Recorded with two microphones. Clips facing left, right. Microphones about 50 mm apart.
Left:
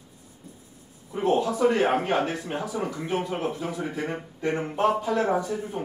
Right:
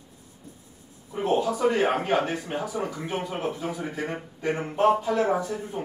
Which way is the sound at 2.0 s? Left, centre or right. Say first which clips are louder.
Even; centre.